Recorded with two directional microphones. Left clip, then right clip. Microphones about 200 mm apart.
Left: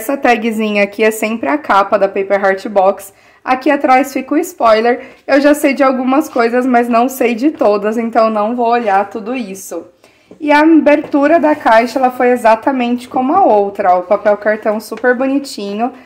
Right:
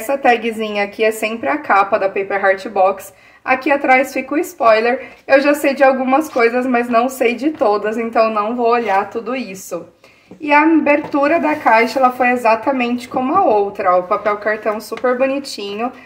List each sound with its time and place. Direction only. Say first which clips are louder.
0.0 s speech: left 2 dB; 45° left (ahead or behind)
10.4 s a woman's voice: left 4 dB; 45° left (ahead or behind)